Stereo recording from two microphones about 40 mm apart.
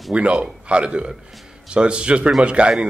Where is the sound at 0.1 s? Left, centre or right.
Right.